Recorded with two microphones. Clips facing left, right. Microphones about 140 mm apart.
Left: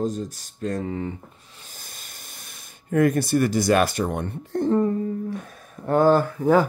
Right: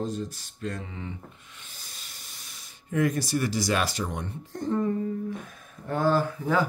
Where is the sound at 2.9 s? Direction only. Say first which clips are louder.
Left 6 dB; 55° left (ahead or behind).